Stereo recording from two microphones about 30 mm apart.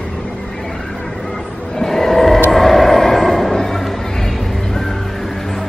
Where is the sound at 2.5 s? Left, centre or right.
Centre.